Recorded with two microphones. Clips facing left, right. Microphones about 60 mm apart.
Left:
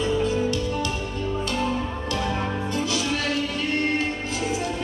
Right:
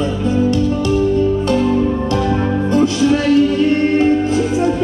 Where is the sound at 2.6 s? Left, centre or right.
Right.